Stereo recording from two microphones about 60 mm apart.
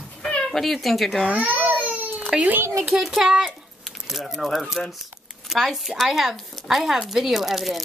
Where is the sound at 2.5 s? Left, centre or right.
Right.